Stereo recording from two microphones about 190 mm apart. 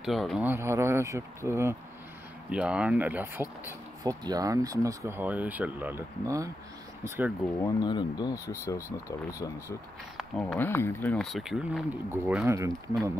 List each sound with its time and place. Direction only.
0.0 s speech: centre (ahead or behind); by 6.5 s 15° right (ahead or behind)
7.5 s speech: 20° left (ahead or behind)
10.1 s speech: 5° left (ahead or behind); by 12.9 s 15° right (ahead or behind)